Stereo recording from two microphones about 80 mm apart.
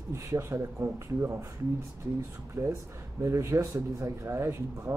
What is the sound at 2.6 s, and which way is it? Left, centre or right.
Speech, right.